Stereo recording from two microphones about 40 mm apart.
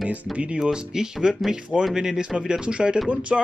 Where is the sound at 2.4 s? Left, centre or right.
Right.